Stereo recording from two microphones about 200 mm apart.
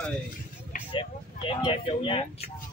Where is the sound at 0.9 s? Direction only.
25° left (ahead or behind).